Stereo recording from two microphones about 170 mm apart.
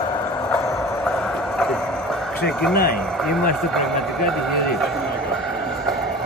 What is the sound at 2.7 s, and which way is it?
Speech, 65° left (ahead or behind).